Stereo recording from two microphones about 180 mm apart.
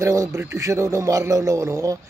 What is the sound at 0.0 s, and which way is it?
Speech, 15° right (ahead or behind).